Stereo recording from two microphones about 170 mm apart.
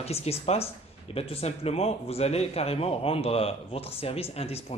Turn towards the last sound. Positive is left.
turn(degrees=35)  # may be behind; listen again after turning